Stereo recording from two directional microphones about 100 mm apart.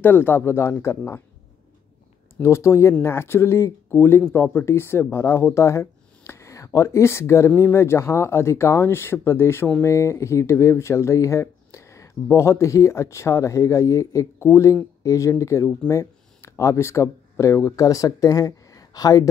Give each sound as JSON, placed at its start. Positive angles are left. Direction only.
{"t": 0.0, "sound": "speech", "side_deg": 20}
{"t": 2.4, "sound": "speech", "side_deg": 30}